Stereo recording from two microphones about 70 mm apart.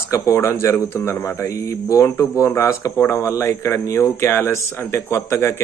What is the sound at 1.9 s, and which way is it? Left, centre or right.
Speech, left.